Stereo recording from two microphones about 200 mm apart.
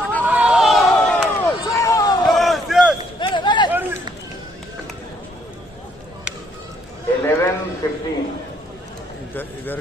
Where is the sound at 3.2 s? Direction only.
25° left (ahead or behind).